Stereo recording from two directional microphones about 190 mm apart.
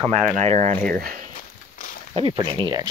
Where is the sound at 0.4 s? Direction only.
35° right (ahead or behind).